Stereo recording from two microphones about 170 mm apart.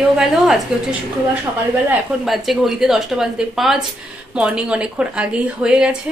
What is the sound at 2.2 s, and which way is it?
A woman's voice, centre (ahead or behind).